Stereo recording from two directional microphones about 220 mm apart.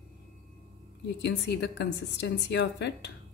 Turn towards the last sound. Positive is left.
turn(degrees=50)  # may be behind; listen again after turning